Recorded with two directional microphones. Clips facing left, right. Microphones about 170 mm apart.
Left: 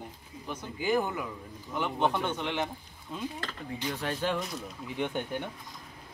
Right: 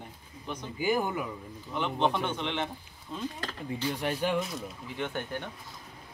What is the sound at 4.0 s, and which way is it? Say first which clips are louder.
Speech: right 1 dB; 15° right (ahead or behind).